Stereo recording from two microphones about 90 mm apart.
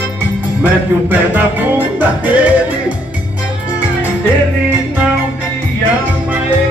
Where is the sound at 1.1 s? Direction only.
20° right (ahead or behind).